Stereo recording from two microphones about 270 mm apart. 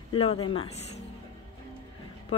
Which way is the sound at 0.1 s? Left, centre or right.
Left.